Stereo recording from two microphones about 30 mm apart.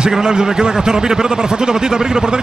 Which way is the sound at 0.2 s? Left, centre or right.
Right.